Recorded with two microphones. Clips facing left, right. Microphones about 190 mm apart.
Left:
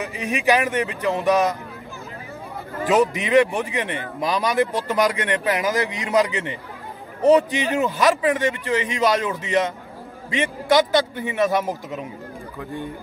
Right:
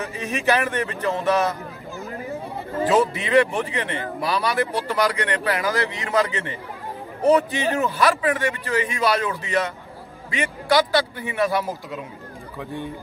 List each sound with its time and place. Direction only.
0.0 s speech: 15° left (ahead or behind)
2.9 s a man's voice: 15° left (ahead or behind)